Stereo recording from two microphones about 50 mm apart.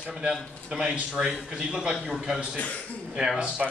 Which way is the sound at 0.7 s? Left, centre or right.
Centre.